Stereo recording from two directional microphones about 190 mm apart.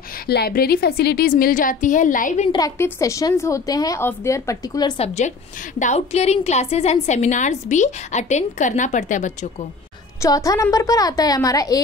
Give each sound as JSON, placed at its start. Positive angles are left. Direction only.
{"t": 0.1, "sound": "a woman's voice", "side_deg": 55}
{"t": 2.5, "sound": "a woman's voice", "side_deg": 20}
{"t": 10.2, "sound": "a woman's voice", "side_deg": 20}